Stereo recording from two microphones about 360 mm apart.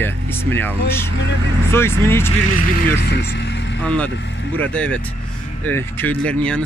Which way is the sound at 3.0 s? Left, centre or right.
Left.